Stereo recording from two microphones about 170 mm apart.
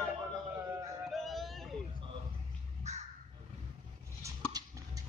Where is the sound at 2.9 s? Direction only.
40° right (ahead or behind).